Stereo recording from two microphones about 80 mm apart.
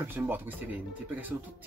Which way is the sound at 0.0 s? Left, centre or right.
Right.